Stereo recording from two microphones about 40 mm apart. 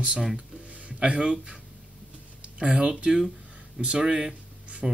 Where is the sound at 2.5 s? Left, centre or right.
Right.